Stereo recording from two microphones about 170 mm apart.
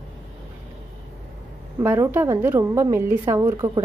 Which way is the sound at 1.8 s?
15° right (ahead or behind).